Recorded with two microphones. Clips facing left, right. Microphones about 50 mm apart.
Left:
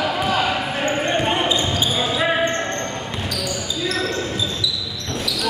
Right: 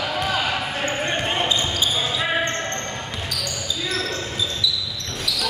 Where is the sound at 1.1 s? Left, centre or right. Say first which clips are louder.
Left 3 dB; centre.